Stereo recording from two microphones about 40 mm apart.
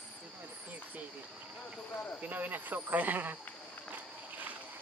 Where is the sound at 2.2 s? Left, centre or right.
Right.